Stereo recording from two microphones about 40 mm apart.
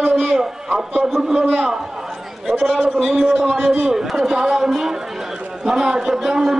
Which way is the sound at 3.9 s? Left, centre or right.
Centre.